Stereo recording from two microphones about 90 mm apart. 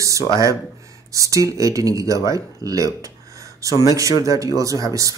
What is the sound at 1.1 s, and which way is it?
Speech, 40° right (ahead or behind).